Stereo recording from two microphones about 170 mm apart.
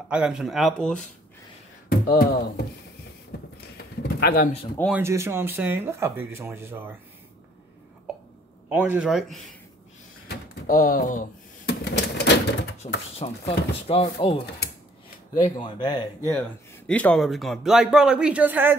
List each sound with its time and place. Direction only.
0.1 s a man's voice: 5° right (ahead or behind)
1.9 s speech: 60° left (ahead or behind)
3.3 s a sound: 75° left (ahead or behind)
4.9 s speech: 15° right (ahead or behind)
8.6 s speech: 10° right (ahead or behind)
10.2 s door: 55° left (ahead or behind)
11.8 s typewriter: 75° left (ahead or behind)
12.8 s speech: 35° left (ahead or behind)
15.5 s speech: 25° left (ahead or behind)
16.3 s a man's voice: 10° left (ahead or behind); by 18.8 s 10° right (ahead or behind)